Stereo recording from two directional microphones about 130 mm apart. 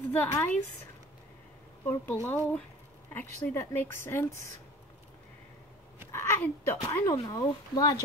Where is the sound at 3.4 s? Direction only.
20° left (ahead or behind).